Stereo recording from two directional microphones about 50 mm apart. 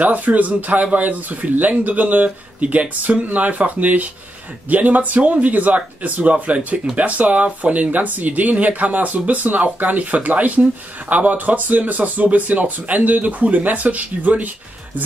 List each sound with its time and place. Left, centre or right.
0.0 s speech: right